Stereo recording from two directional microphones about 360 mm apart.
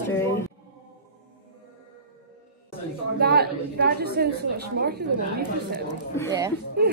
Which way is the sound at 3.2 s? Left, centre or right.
Right.